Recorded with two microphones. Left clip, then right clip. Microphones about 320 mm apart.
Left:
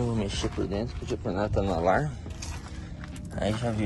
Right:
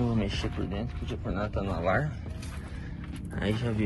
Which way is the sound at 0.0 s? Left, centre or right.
Centre.